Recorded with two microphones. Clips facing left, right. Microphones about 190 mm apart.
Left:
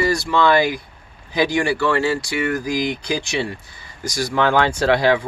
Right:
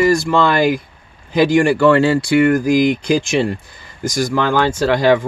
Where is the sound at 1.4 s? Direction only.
55° right (ahead or behind).